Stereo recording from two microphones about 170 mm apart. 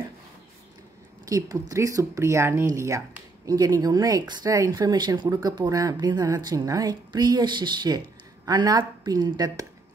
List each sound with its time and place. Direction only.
1.2 s speech: 20° right (ahead or behind)